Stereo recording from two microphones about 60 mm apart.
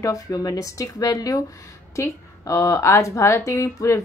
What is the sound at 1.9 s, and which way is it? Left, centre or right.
A woman's voice, left.